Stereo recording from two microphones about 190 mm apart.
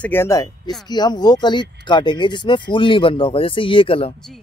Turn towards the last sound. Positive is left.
turn(degrees=30)  # may be behind; listen again after turning